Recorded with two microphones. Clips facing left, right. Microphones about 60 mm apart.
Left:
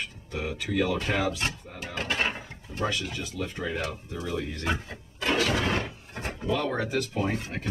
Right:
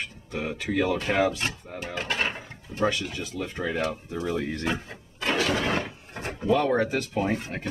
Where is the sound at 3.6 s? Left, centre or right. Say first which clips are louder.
Right 5 dB; right.